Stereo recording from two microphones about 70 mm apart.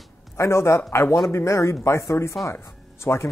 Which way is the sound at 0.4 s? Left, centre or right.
Left.